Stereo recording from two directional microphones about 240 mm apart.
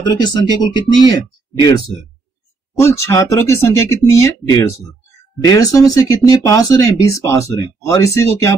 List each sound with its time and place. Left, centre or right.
0.0 s speech: centre
2.8 s speech: centre